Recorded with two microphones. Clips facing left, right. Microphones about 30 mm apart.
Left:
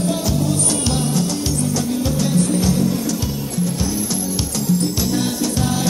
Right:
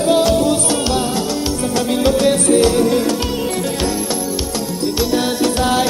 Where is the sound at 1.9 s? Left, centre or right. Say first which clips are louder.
Right 6 dB; right.